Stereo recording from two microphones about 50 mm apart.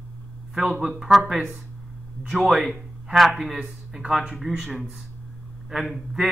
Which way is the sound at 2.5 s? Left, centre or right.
Centre.